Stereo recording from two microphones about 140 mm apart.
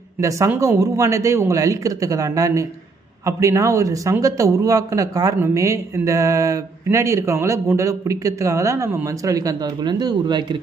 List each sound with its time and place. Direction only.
0.6 s a man's voice: 25° right (ahead or behind)